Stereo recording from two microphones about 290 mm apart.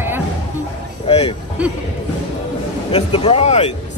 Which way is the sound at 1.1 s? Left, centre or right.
Left.